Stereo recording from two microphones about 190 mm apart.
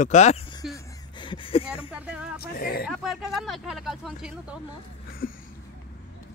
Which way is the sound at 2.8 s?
Centre (ahead or behind).